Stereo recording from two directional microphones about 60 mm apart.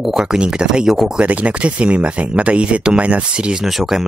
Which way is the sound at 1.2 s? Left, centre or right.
Right.